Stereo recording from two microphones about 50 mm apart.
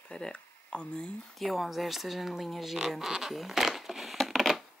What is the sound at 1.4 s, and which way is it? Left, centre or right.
Speech, centre.